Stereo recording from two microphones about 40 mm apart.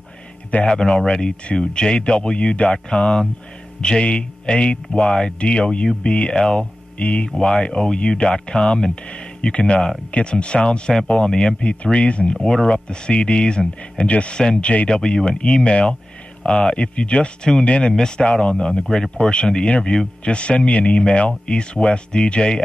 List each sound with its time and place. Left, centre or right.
0.7 s speech: centre
6.3 s speech: centre
7.0 s speech: left
7.2 s speech: centre
11.6 s speech: left
14.3 s speech: centre
14.6 s speech: left
14.9 s speech: centre